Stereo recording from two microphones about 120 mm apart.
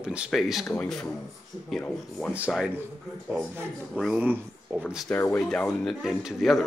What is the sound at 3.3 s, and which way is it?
Speech, 10° right (ahead or behind).